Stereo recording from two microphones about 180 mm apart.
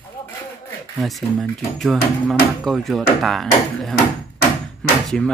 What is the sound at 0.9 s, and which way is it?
Speech, centre (ahead or behind).